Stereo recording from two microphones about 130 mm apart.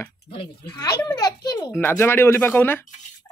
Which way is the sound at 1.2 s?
30° left (ahead or behind).